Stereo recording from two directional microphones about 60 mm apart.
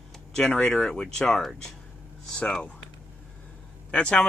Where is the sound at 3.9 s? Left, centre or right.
Centre.